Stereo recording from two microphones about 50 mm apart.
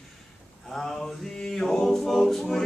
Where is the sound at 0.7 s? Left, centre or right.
Centre.